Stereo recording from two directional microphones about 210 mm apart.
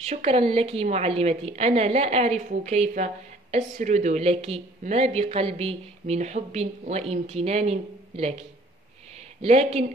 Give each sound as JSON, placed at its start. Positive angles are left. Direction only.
{"t": 0.0, "sound": "a woman's voice", "side_deg": -30}